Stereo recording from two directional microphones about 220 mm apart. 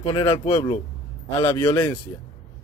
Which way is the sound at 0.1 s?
10° left (ahead or behind).